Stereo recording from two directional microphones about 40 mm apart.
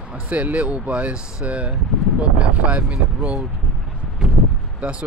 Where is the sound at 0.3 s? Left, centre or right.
Right.